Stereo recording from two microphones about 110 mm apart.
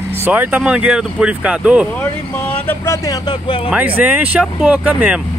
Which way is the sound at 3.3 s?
50° left (ahead or behind).